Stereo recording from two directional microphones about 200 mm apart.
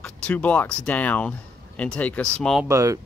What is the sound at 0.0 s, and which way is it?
Speech, 5° left (ahead or behind).